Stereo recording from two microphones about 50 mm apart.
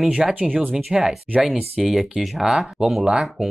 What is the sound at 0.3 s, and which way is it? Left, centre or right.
Speech, right.